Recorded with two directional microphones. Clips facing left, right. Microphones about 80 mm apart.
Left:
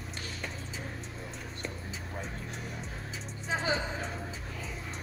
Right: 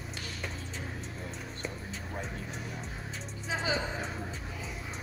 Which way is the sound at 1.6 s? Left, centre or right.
Centre.